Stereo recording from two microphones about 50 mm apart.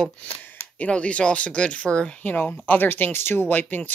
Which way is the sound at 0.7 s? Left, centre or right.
Left.